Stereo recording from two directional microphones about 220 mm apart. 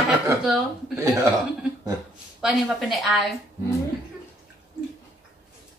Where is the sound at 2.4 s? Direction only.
5° right (ahead or behind).